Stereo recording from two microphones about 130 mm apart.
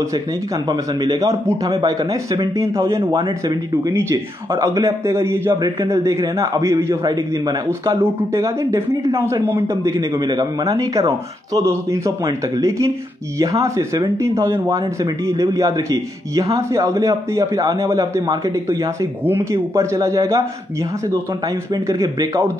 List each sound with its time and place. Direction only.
0.7 s speech: 30° right (ahead or behind)
3.7 s speech: 20° right (ahead or behind)
21.7 s speech: 25° right (ahead or behind)